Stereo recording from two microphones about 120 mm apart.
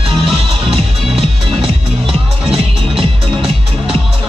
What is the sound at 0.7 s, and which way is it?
Music, 55° right (ahead or behind).